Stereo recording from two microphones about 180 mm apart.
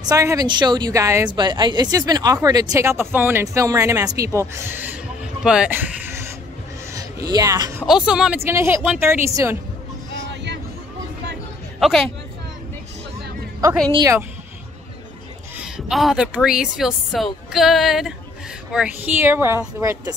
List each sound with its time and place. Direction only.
0.1 s speech: 20° right (ahead or behind)
6.9 s music: 20° right (ahead or behind)
7.8 s a woman's voice: 5° right (ahead or behind)
8.5 s speech: 15° right (ahead or behind)
11.8 s a woman's voice: 5° left (ahead or behind)
13.9 s speech: 20° right (ahead or behind)
15.5 s a woman's voice: centre (ahead or behind); by 20.2 s 20° right (ahead or behind)